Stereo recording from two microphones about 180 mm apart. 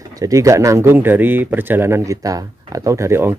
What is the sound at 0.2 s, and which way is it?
Speech, 20° right (ahead or behind).